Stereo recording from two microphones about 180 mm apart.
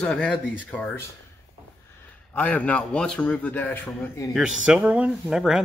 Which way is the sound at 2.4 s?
10° left (ahead or behind).